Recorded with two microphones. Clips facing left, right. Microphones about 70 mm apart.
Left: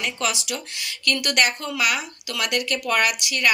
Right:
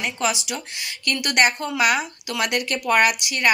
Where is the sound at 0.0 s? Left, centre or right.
Centre.